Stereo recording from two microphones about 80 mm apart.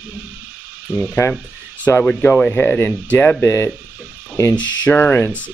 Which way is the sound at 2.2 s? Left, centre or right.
Centre.